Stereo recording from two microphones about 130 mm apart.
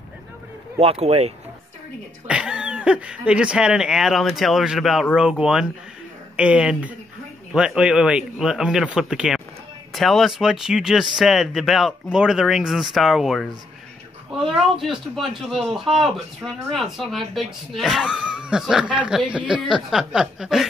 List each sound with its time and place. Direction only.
0.7 s speech: 50° right (ahead or behind)
2.2 s speech: 5° right (ahead or behind)